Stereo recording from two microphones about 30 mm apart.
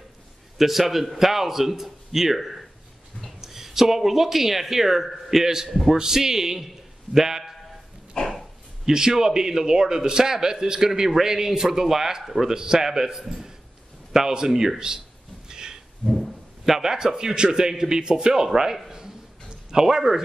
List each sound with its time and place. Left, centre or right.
0.6 s a man's voice: centre
5.0 s a man's voice: centre
5.3 s a man's voice: centre
5.7 s a man's voice: centre
5.9 s a man's voice: centre
8.2 s dog: centre
8.8 s a man's voice: centre
12.4 s a man's voice: right
15.4 s a sound: right
16.0 s dog: centre
16.6 s a man's voice: centre
18.9 s a sound: centre
19.7 s a man's voice: centre